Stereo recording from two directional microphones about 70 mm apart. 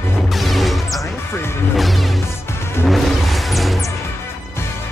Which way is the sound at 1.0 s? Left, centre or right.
Left.